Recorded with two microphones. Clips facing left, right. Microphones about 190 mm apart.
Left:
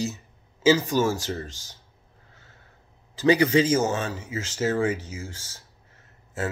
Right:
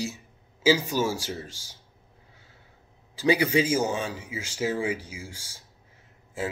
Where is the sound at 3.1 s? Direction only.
10° right (ahead or behind).